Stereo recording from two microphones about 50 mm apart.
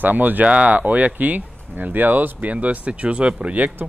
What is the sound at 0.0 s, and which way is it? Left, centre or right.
Speech, right.